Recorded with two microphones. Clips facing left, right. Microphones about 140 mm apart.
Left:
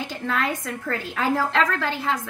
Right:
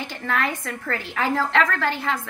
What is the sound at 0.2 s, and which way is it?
A woman's voice, 5° left (ahead or behind).